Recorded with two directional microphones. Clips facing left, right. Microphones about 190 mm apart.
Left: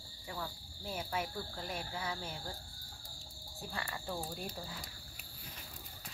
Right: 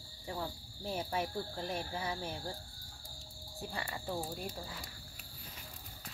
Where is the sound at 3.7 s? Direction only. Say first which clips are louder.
Even; 25° right (ahead or behind).